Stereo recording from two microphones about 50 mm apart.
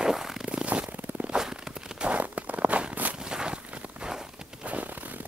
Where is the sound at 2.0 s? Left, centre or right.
Right.